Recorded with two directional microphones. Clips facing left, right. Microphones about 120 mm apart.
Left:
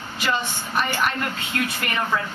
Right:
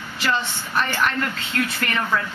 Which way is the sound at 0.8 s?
15° left (ahead or behind).